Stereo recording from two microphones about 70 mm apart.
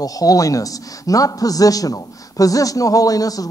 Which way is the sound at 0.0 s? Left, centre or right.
Left.